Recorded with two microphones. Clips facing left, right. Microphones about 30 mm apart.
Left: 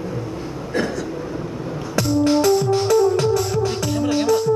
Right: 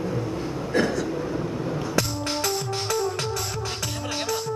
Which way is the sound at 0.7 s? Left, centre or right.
Centre.